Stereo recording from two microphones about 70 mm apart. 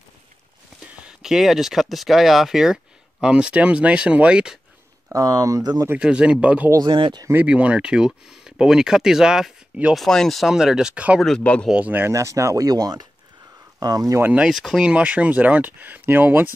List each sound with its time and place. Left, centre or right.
1.2 s speech: centre
5.1 s speech: right
5.9 s speech: centre
6.8 s speech: right
7.4 s speech: centre
9.9 s speech: centre
10.5 s speech: centre
11.1 s speech: centre
11.7 s speech: centre
12.1 s speech: right
12.6 s speech: right
13.7 s speech: right
14.4 s speech: centre; by 16.4 s right